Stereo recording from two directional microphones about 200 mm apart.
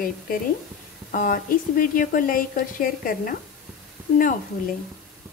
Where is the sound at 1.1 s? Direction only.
45° left (ahead or behind).